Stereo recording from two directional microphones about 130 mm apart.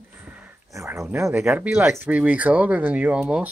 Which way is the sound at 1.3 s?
5° right (ahead or behind).